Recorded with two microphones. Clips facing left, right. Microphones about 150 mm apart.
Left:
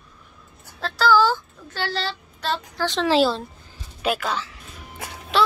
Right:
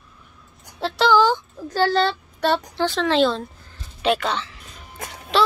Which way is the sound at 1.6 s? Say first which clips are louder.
Right 9 dB; 45° right (ahead or behind).